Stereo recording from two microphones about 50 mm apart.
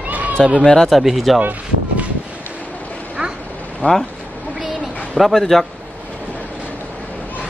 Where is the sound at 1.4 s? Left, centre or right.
Right.